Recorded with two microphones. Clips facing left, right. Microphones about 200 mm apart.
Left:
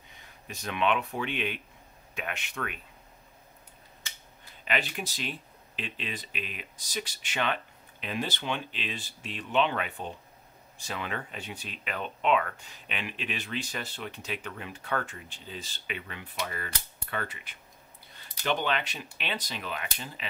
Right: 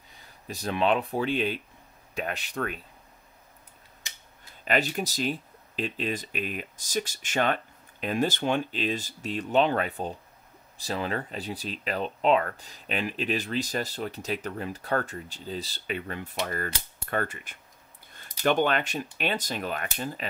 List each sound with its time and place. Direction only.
0.1 s speech: 35° right (ahead or behind)
4.6 s speech: 40° right (ahead or behind)